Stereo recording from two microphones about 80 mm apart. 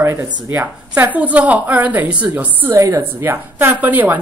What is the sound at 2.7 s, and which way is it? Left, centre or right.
A woman's voice, right.